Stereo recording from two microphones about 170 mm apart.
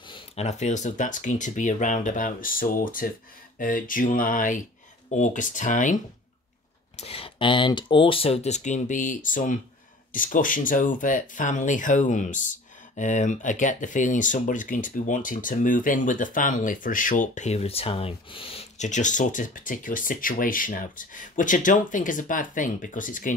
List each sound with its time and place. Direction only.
0.1 s speech: 40° left (ahead or behind)
7.0 s speech: 35° left (ahead or behind); by 23.3 s 50° left (ahead or behind)